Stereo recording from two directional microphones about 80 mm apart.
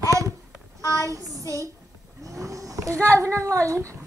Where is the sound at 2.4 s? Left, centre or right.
Right.